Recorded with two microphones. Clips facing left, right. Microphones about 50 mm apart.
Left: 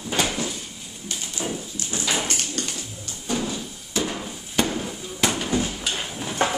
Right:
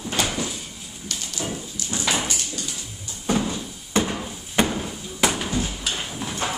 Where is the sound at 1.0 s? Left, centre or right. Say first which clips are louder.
Even; centre.